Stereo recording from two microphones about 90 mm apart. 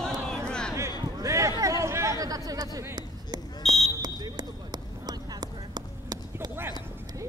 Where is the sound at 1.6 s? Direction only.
35° right (ahead or behind).